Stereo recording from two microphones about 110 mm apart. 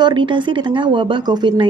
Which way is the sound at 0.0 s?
45° right (ahead or behind).